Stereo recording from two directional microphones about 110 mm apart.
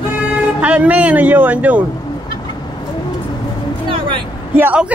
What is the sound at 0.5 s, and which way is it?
Speech, 15° right (ahead or behind).